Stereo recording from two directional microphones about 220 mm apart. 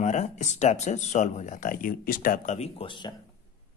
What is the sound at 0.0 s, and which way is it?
A man's voice, 30° left (ahead or behind).